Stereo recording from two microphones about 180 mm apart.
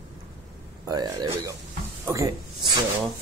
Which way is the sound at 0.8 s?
20° right (ahead or behind).